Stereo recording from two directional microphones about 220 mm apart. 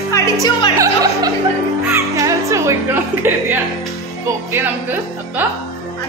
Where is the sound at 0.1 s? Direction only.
15° left (ahead or behind).